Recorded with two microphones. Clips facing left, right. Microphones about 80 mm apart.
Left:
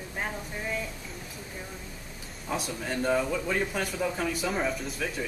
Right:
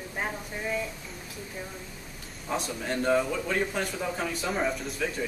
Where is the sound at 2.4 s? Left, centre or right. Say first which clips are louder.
Right 1 dB; centre.